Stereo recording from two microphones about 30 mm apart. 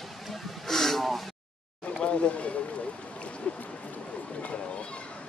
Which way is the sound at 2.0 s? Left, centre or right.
Left.